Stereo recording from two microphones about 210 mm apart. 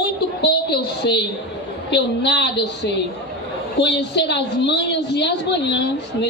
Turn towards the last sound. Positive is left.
turn(degrees=55)  # may be behind; listen again after turning